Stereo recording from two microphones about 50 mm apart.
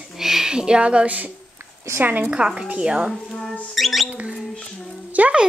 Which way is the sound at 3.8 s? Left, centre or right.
Centre.